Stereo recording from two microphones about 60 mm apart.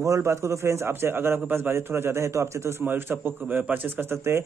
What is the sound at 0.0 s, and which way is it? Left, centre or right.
A man's voice, right.